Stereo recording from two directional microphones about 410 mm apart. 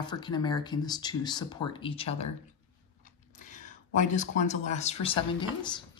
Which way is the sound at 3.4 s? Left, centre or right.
Centre.